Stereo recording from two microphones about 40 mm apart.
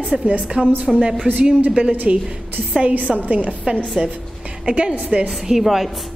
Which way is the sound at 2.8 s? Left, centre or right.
Right.